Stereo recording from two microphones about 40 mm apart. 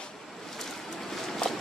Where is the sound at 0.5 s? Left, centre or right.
Centre.